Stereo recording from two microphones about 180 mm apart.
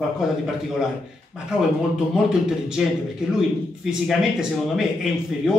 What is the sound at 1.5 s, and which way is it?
Speech, 5° right (ahead or behind).